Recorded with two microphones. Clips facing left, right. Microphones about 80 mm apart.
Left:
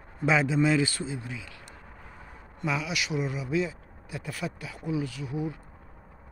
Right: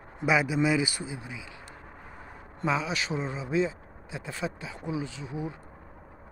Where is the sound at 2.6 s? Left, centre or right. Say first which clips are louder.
Right 2 dB; right.